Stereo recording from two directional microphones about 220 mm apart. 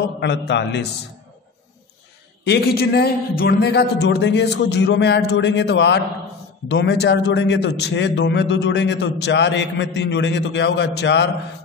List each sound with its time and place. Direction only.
0.2 s a man's voice: 50° left (ahead or behind)
2.4 s a man's voice: 45° left (ahead or behind)